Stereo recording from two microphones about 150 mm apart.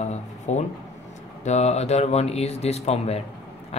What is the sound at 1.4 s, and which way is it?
Speech, 45° left (ahead or behind).